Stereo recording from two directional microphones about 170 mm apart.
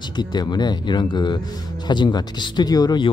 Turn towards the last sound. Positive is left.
turn(degrees=25)  # may be behind; listen again after turning